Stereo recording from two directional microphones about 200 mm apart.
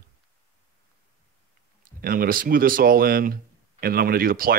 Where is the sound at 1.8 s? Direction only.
45° right (ahead or behind).